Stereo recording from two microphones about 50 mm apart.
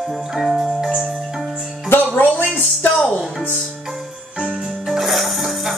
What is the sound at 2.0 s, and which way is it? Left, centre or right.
Music, left.